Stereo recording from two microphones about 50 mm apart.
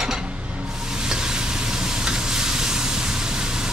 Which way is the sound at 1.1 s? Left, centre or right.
Centre.